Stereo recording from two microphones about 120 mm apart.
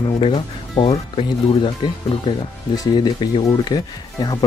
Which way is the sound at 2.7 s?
35° left (ahead or behind).